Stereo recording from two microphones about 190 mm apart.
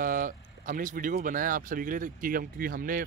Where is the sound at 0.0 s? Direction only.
50° right (ahead or behind).